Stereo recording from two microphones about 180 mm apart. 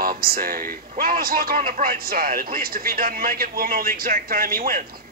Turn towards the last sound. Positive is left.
turn(degrees=-55)  # may be behind; listen again after turning